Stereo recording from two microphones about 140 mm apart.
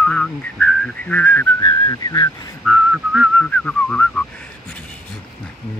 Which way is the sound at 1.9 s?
25° left (ahead or behind).